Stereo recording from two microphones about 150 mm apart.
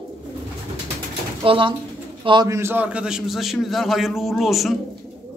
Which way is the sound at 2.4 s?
15° right (ahead or behind).